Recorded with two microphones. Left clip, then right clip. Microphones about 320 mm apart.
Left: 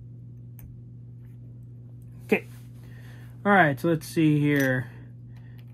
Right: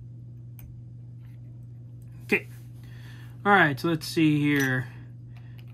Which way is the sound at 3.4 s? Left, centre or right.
Centre.